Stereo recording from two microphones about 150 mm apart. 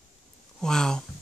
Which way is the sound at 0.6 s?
5° left (ahead or behind).